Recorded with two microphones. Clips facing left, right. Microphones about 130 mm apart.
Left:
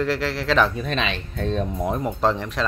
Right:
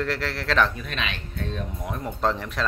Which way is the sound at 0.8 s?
30° left (ahead or behind).